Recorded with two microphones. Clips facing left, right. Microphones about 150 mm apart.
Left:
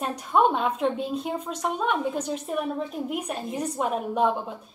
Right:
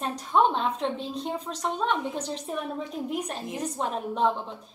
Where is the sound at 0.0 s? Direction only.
10° left (ahead or behind).